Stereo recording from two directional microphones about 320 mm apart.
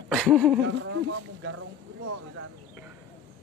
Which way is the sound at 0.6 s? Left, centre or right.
Right.